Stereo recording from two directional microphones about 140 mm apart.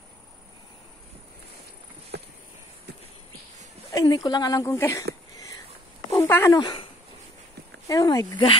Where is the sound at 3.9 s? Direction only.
25° left (ahead or behind).